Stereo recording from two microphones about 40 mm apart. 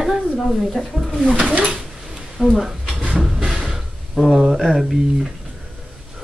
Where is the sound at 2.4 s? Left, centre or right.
Centre.